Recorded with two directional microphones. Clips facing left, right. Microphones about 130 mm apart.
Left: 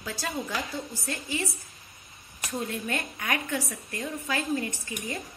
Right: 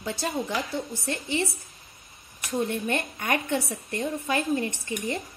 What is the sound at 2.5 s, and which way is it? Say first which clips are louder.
A woman's voice: right 5 dB; 25° right (ahead or behind).